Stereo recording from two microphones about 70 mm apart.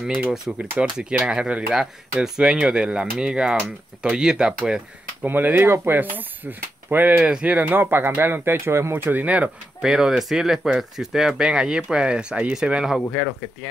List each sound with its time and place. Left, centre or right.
0.0 s speech: centre
5.2 s speech: right
7.2 s speech: centre
9.8 s speech: centre